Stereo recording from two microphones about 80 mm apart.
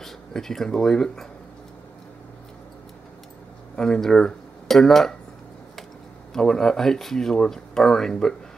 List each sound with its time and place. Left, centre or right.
0.0 s speech: centre
3.7 s speech: centre
6.3 s speech: centre